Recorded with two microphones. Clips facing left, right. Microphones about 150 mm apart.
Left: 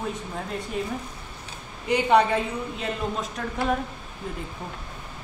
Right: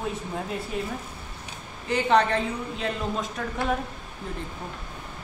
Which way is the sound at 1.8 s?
10° left (ahead or behind).